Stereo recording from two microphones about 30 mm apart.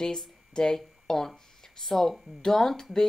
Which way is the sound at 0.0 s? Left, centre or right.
Centre.